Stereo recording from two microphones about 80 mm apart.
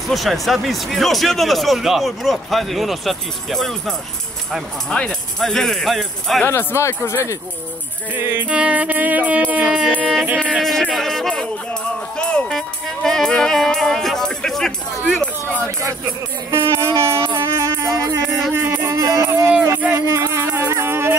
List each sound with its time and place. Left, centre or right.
0.1 s speech: centre
4.8 s speech: centre
6.4 s speech: left
8.1 s music: right
10.6 s music: centre
16.5 s music: right
18.9 s music: right